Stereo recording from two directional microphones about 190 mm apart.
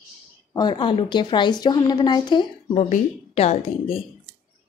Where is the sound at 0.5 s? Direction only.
25° left (ahead or behind).